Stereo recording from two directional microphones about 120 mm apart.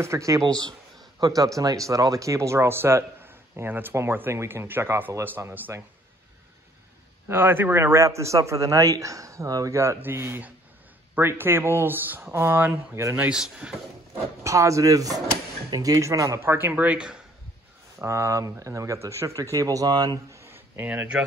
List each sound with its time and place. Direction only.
0.0 s speech: 25° right (ahead or behind)
0.5 s speech: 35° right (ahead or behind); by 5.9 s 20° right (ahead or behind)
7.2 s speech: 20° right (ahead or behind)
14.4 s speech: 25° right (ahead or behind); by 17.2 s 10° right (ahead or behind)
17.9 s speech: 25° right (ahead or behind)